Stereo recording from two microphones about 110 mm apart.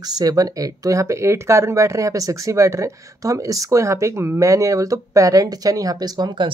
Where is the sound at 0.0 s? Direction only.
35° right (ahead or behind).